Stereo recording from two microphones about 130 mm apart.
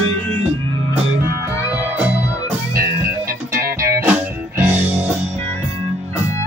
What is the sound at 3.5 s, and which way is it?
Music, 90° right.